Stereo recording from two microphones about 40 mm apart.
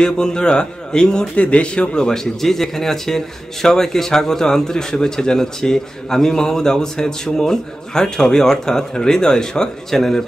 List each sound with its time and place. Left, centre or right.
0.0 s a man's voice: centre
1.3 s a man's voice: left; by 10.2 s centre